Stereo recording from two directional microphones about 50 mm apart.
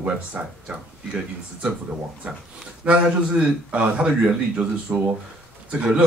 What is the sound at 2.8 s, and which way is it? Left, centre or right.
Speech, right.